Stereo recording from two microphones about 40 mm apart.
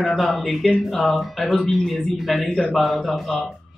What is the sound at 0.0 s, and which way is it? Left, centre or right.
Speech, centre.